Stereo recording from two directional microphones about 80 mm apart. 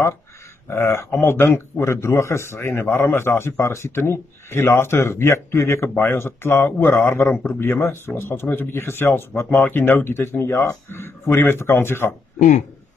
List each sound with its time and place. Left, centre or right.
0.7 s a man's voice: left